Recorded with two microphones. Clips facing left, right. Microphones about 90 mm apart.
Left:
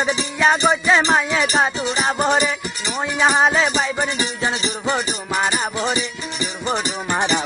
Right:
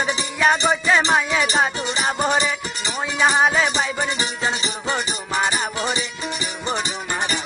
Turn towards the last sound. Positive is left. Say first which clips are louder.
# left 2 dB
turn(degrees=0)  # may be behind; listen again after turning